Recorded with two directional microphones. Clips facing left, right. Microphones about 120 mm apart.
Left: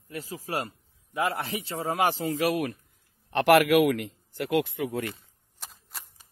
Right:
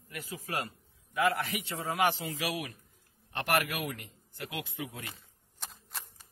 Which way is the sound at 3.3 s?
85° left.